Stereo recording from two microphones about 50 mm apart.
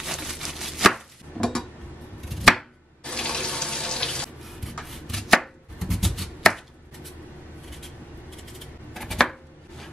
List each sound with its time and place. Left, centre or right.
0.0 s chopping: centre
1.4 s dishes: centre
2.2 s chopping: centre
3.0 s water tap: centre
4.7 s chopping: centre
8.5 s a sound: centre
9.2 s chopping: centre